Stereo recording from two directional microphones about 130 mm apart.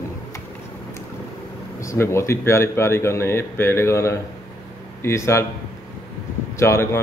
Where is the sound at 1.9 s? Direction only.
20° left (ahead or behind).